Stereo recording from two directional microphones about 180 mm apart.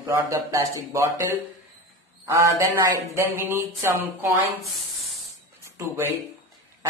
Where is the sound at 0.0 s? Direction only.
15° right (ahead or behind).